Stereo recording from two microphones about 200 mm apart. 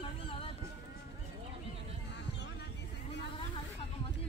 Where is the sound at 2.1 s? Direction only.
60° left (ahead or behind).